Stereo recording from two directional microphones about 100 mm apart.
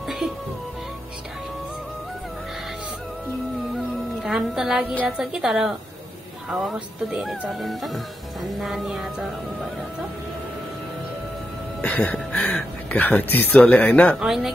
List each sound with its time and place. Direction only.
3.7 s music: 5° right (ahead or behind)
5.0 s speech: 10° right (ahead or behind)
11.8 s speech: 15° left (ahead or behind)
14.2 s speech: 5° right (ahead or behind)